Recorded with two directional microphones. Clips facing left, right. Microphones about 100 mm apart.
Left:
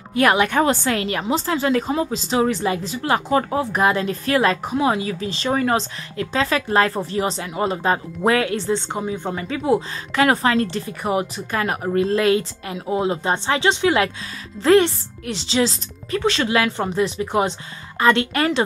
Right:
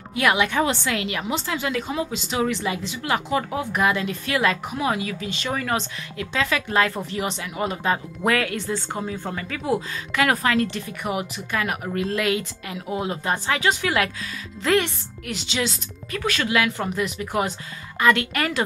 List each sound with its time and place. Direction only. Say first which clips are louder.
0.1 s a woman's voice: left 4 dB; 40° left (ahead or behind)